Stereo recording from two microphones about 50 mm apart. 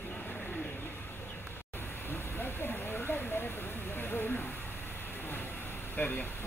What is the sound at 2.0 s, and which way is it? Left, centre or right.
Hiss, left.